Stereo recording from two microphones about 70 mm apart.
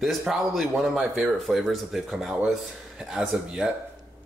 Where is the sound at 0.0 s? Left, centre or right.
Centre.